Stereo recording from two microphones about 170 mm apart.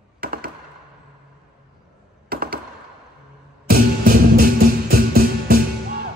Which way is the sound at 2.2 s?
60° right (ahead or behind).